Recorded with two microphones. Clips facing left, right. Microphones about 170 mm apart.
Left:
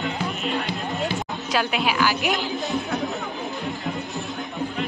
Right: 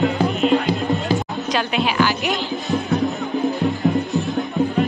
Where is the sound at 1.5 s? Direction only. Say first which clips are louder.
Right 2 dB; 5° left (ahead or behind).